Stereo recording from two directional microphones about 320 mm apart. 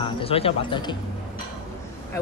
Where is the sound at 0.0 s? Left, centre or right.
Centre.